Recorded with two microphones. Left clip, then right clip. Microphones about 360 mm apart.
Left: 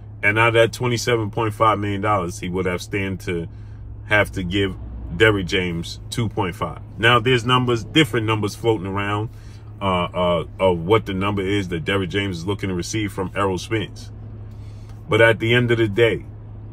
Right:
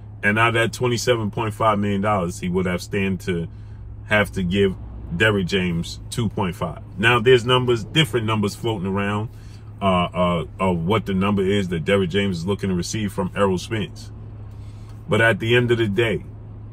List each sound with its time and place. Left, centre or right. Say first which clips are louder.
0.2 s speech: left 3 dB; centre
10.3 s speech: left 4 dB; centre
15.0 s speech: left 3 dB; centre